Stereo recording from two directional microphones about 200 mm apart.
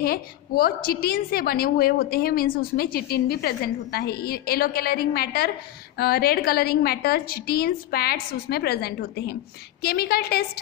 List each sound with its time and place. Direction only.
0.0 s a woman's voice: 45° left (ahead or behind)